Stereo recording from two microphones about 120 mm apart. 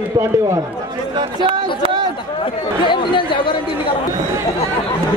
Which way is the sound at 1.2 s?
45° right (ahead or behind).